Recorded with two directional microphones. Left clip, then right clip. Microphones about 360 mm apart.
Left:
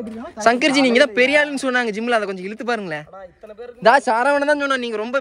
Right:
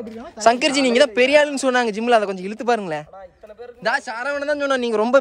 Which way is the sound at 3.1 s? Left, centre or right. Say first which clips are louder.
Left 2 dB; left.